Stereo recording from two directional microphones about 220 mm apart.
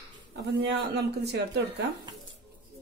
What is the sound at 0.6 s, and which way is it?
A woman's voice, 50° right (ahead or behind).